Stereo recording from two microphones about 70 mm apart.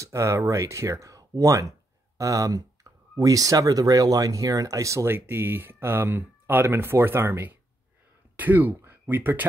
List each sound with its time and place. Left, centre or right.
0.0 s speech: right
5.1 s speech: right